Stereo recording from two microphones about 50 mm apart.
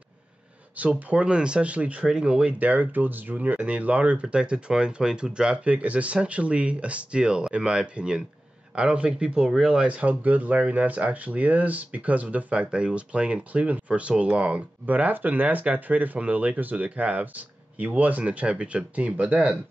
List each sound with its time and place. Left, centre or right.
0.7 s speech: right
2.0 s speech: centre
2.6 s speech: right; by 9.8 s centre
9.8 s speech: right
14.9 s speech: right